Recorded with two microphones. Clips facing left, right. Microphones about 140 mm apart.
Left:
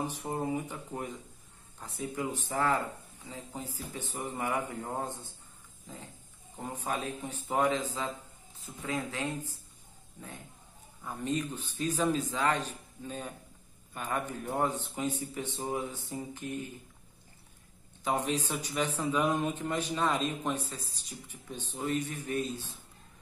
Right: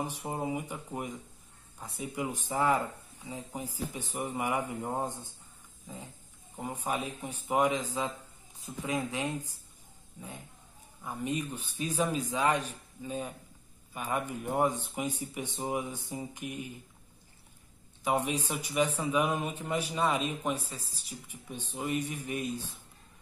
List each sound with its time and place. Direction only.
0.0 s a man's voice: 10° right (ahead or behind)
6.5 s a man's voice: 10° right (ahead or behind)
11.1 s a man's voice: 10° right (ahead or behind)
18.0 s a man's voice: 10° right (ahead or behind)